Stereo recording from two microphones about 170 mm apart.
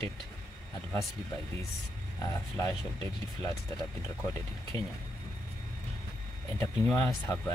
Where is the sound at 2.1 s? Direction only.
15° left (ahead or behind).